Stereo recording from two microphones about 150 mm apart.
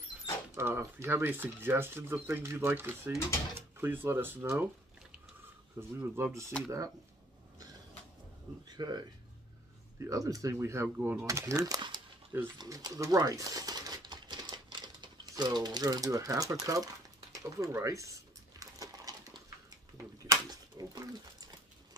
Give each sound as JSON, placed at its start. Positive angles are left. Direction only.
{"t": 0.6, "sound": "speech", "side_deg": -15}
{"t": 5.8, "sound": "speech", "side_deg": -15}
{"t": 8.6, "sound": "speech", "side_deg": -30}
{"t": 12.5, "sound": "a sound", "side_deg": -25}
{"t": 16.6, "sound": "speech", "side_deg": -25}
{"t": 17.4, "sound": "a sound", "side_deg": -20}
{"t": 20.2, "sound": "bird", "side_deg": -25}